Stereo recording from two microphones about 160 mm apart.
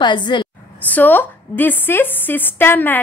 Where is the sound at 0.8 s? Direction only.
10° left (ahead or behind).